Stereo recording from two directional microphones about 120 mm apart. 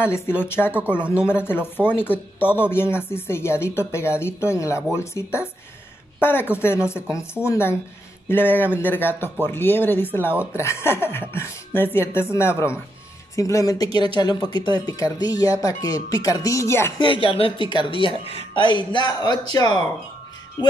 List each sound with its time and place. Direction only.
0.0 s speech: 20° left (ahead or behind)
17.0 s speech: 45° left (ahead or behind)
20.6 s music: 35° left (ahead or behind)